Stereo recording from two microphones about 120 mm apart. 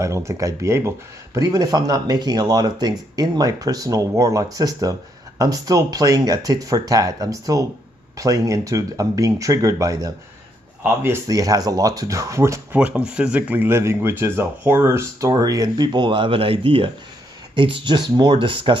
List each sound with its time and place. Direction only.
0.0 s speech: 25° right (ahead or behind)
12.7 s speech: 10° right (ahead or behind); by 18.8 s 45° right (ahead or behind)